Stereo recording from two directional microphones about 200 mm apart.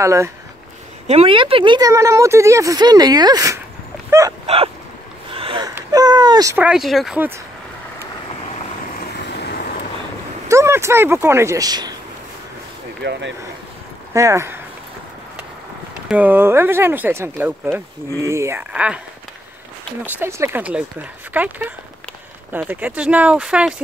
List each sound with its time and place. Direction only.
0.0 s speech: 15° right (ahead or behind)
1.0 s speech: 30° right (ahead or behind)
5.3 s a sound: 25° right (ahead or behind); by 7.3 s 5° right (ahead or behind)
9.4 s vehicle: 55° left (ahead or behind)
10.5 s speech: 15° right (ahead or behind)
13.0 s speech: 65° right (ahead or behind)
14.1 s speech: 15° right (ahead or behind)
16.1 s speech: 10° right (ahead or behind)
20.2 s speech: 15° right (ahead or behind)